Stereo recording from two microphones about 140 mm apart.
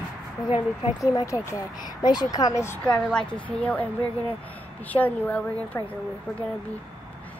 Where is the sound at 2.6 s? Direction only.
10° left (ahead or behind).